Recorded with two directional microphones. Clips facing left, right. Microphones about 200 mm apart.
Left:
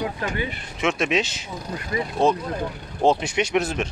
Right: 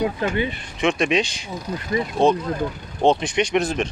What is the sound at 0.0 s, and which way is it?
Speech, 25° right (ahead or behind).